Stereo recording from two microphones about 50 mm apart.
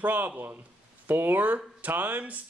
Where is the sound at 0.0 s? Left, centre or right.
Right.